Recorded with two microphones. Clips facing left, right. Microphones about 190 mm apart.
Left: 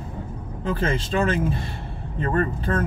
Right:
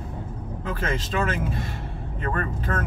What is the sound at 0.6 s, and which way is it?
Speech, 30° left (ahead or behind).